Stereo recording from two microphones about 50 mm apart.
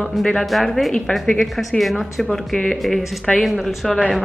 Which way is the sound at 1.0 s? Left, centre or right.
Centre.